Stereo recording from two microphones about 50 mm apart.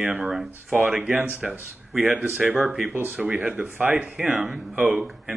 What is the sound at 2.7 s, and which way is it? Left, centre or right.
Speech, centre.